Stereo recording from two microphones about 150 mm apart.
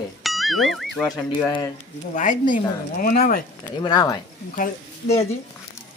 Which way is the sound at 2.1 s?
60° left (ahead or behind).